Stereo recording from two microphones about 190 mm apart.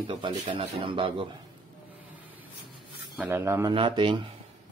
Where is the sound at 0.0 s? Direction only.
25° right (ahead or behind).